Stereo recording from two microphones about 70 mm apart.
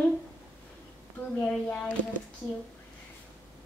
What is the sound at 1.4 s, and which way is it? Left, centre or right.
Speech, centre.